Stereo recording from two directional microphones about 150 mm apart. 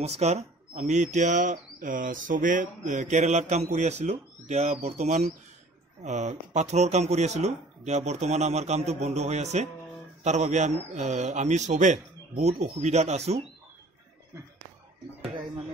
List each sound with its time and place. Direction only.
0.0 s speech: 45° right (ahead or behind)